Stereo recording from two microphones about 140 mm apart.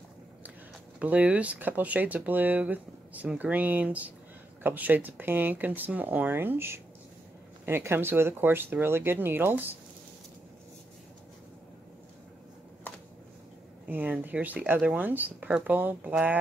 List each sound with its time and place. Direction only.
0.9 s speech: 10° right (ahead or behind)
13.8 s speech: 10° right (ahead or behind)